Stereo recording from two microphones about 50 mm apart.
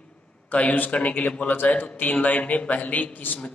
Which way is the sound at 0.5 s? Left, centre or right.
Left.